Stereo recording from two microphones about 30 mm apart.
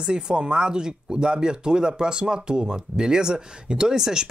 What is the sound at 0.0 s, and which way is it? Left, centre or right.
Speech, right.